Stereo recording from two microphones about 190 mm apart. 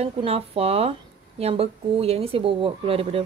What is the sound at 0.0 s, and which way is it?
Speech, 30° right (ahead or behind).